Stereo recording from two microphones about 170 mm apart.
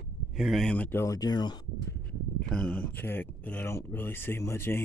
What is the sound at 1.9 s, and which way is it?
Speech, 5° left (ahead or behind).